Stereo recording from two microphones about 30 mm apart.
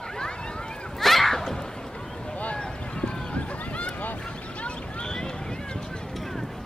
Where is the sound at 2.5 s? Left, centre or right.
Left.